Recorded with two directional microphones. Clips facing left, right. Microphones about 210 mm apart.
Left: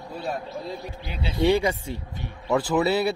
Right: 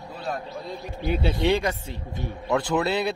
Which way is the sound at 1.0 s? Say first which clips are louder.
Right 8 dB; 50° right (ahead or behind).